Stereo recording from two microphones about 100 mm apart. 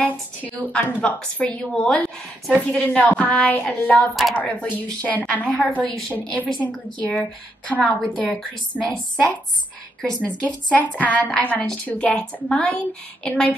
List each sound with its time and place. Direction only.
0.0 s a woman's voice: 15° left (ahead or behind)
3.0 s a woman's voice: 15° left (ahead or behind)
4.1 s speech: centre (ahead or behind)
4.4 s a woman's voice: 15° left (ahead or behind)